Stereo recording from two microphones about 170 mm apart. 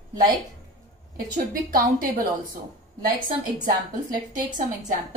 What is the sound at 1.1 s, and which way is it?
A woman's voice, 55° right (ahead or behind).